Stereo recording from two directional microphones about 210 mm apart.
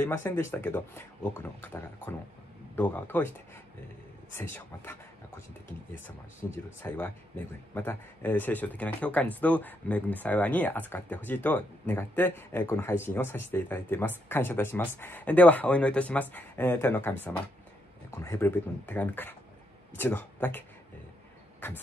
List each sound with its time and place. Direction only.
0.0 s speech: 10° left (ahead or behind)